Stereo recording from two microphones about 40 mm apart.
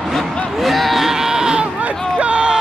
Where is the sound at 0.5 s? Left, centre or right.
Centre.